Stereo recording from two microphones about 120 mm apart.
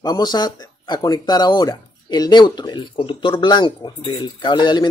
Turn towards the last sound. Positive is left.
turn(degrees=40)  # may be behind; listen again after turning